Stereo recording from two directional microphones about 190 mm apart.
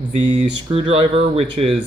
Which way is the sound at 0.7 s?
30° right (ahead or behind).